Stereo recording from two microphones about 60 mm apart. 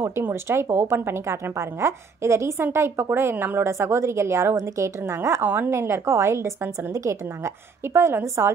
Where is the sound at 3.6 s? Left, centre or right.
Right.